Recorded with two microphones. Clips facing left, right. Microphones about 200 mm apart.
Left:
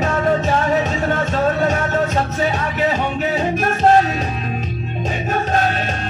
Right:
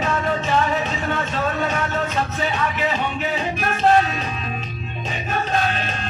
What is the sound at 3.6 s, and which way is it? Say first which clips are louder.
Music: left 4 dB; 40° left (ahead or behind).